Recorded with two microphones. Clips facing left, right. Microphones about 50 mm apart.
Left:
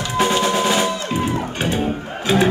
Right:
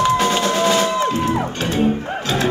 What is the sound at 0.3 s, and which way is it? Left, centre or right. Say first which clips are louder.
Music: right 1 dB; centre.